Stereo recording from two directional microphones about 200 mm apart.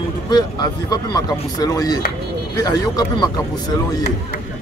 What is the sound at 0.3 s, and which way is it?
Speech, 20° left (ahead or behind).